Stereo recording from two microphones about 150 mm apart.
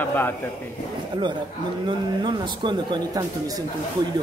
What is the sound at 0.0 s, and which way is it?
Speech, 15° left (ahead or behind).